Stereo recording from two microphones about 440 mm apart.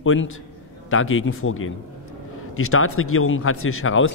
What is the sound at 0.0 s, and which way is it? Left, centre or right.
A man's voice, left.